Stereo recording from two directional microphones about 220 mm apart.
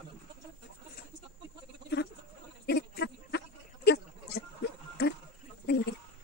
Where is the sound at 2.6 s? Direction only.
45° left (ahead or behind).